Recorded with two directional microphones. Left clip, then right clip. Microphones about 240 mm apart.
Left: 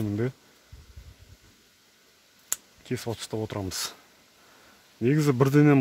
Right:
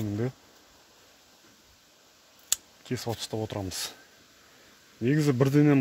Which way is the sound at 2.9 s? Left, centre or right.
Centre.